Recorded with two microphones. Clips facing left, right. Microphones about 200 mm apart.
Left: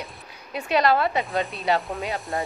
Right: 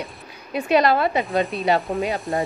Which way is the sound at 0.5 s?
15° right (ahead or behind).